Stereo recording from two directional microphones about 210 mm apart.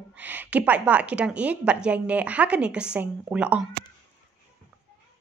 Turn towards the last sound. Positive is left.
turn(degrees=-5)  # may be behind; listen again after turning